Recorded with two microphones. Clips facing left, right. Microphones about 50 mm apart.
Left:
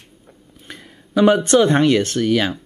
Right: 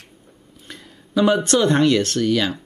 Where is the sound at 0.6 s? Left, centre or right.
Centre.